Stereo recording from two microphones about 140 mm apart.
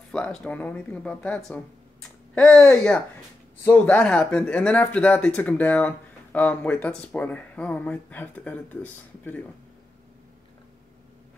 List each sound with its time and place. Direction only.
0.1 s speech: 5° left (ahead or behind)